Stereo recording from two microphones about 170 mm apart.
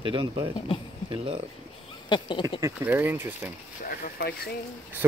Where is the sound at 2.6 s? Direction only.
15° right (ahead or behind).